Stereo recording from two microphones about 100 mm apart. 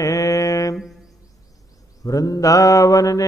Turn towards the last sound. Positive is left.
turn(degrees=35)  # may be behind; listen again after turning